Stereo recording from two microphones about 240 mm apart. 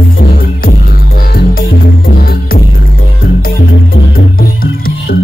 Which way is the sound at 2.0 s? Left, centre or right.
Left.